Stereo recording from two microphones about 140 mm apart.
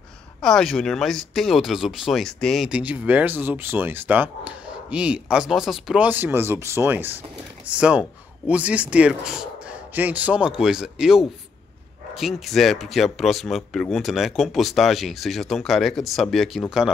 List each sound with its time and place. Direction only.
0.4 s speech: 5° left (ahead or behind)
6.0 s speech: 15° right (ahead or behind)